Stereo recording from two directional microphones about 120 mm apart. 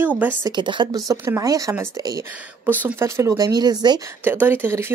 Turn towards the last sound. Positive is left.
turn(degrees=-20)  # may be behind; listen again after turning